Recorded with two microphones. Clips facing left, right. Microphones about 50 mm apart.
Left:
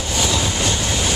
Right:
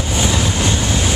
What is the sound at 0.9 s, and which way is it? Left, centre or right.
Vehicle, centre.